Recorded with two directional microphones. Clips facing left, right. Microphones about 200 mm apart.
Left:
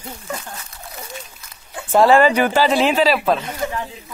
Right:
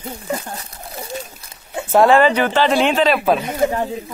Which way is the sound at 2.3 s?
10° left (ahead or behind).